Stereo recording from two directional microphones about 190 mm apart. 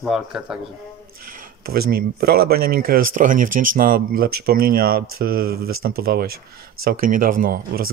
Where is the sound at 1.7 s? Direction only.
50° right (ahead or behind).